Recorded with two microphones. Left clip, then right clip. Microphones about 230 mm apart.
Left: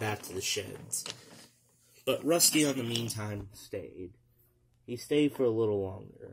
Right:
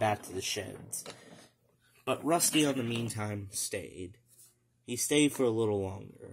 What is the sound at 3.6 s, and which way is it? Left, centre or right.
Speech, right.